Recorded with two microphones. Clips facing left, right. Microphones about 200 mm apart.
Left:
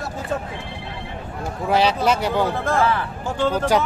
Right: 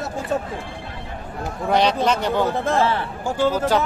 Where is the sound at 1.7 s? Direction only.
5° left (ahead or behind).